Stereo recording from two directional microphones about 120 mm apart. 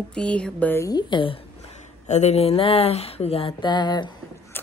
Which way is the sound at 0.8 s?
30° left (ahead or behind).